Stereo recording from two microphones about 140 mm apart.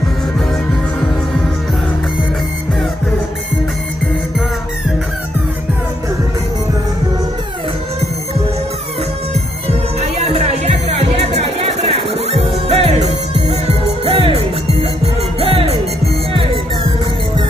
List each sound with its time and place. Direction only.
9.7 s music: 50° right (ahead or behind)